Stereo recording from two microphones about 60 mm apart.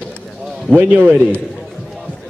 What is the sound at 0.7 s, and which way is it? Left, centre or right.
Speech, right.